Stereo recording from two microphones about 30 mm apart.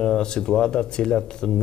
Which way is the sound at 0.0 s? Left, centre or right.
Left.